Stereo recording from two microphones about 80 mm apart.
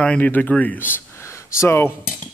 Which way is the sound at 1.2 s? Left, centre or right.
Left.